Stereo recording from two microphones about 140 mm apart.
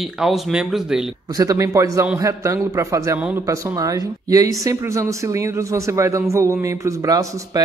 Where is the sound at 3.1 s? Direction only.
10° right (ahead or behind).